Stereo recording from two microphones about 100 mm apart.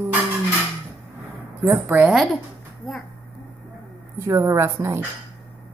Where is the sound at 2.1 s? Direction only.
Centre (ahead or behind).